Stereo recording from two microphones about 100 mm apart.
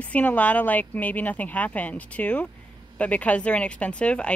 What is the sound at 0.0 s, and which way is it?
Speech, 15° left (ahead or behind).